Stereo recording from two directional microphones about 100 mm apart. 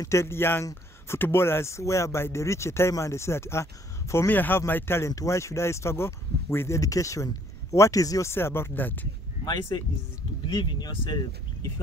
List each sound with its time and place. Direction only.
0.0 s speech: 30° left (ahead or behind)
9.4 s speech: 45° left (ahead or behind)